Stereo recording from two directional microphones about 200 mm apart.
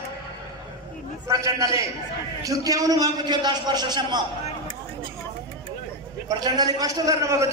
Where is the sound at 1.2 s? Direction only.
15° right (ahead or behind).